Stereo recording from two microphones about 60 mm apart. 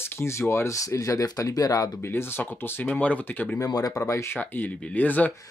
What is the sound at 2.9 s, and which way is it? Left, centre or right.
Speech, left.